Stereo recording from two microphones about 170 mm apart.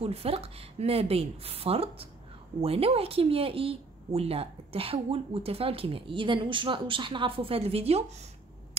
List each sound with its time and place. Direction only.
0.0 s a woman's voice: 35° right (ahead or behind)